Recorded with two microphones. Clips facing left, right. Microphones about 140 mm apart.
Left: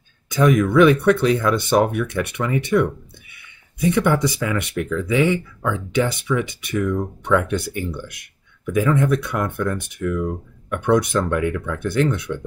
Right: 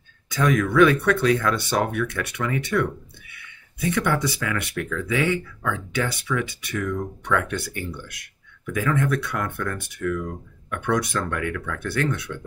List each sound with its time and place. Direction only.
0.3 s speech: 20° left (ahead or behind)
3.8 s speech: 15° left (ahead or behind)